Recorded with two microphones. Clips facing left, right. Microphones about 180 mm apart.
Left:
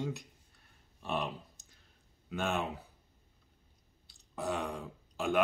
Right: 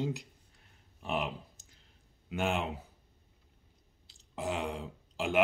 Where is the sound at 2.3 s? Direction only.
15° right (ahead or behind).